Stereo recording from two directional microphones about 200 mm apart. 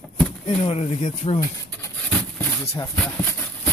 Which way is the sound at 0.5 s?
30° left (ahead or behind).